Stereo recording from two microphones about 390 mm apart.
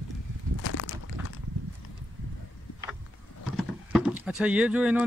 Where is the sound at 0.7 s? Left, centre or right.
Left.